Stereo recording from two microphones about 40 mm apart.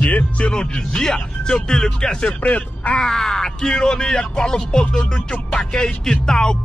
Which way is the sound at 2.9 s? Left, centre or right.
Centre.